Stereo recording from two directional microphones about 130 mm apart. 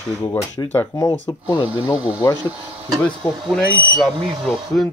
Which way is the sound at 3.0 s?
5° left (ahead or behind).